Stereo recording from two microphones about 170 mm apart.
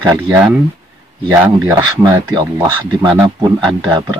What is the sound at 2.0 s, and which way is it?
Speech, 25° right (ahead or behind).